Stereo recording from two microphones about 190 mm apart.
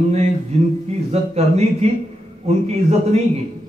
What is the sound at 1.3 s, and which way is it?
Speech, 35° right (ahead or behind).